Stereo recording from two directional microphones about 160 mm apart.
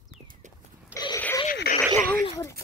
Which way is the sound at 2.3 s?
20° left (ahead or behind).